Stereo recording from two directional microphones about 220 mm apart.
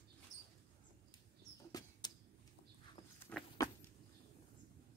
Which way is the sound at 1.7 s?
15° left (ahead or behind).